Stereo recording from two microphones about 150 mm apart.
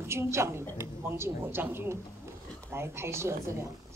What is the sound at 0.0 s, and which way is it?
A woman's voice, 15° right (ahead or behind).